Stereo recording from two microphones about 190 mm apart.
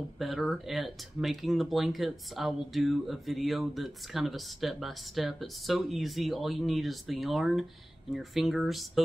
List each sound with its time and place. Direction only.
0.2 s speech: centre (ahead or behind)